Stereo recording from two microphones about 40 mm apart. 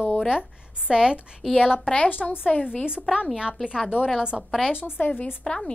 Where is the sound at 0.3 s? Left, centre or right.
Right.